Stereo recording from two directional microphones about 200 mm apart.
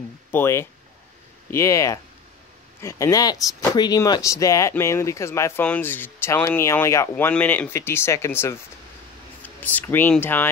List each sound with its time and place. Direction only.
0.3 s speech: 10° left (ahead or behind)